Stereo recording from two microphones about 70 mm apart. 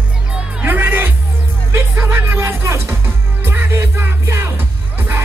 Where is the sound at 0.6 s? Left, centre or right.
Right.